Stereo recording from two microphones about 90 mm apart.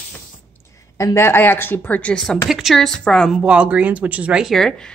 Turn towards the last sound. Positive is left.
turn(degrees=5)  # may be behind; listen again after turning